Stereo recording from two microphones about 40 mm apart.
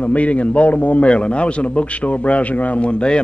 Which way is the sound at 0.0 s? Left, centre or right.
Left.